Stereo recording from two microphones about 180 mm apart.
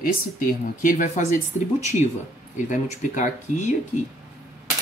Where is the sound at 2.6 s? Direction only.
45° left (ahead or behind).